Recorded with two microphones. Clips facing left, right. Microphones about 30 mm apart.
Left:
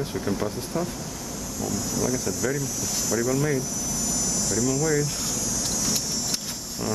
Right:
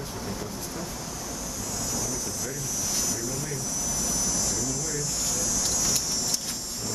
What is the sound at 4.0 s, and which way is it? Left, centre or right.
Air conditioning, centre.